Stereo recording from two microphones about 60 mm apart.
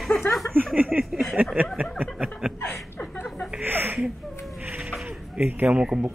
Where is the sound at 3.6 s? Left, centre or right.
Right.